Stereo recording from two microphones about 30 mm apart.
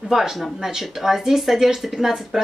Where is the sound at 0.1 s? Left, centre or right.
Centre.